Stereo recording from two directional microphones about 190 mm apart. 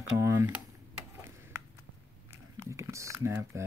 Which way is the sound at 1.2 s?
10° right (ahead or behind).